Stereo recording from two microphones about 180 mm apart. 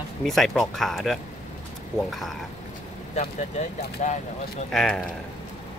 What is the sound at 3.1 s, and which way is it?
Speech, 40° left (ahead or behind).